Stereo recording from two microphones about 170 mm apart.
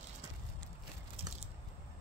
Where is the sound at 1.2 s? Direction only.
35° right (ahead or behind).